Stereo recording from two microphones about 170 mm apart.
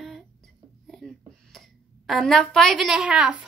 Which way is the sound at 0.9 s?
Centre (ahead or behind).